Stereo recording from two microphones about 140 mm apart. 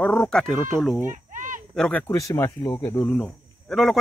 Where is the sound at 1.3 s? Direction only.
65° right (ahead or behind).